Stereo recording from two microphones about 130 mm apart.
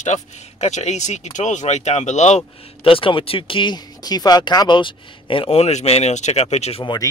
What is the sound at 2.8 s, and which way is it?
Speech, 45° left (ahead or behind).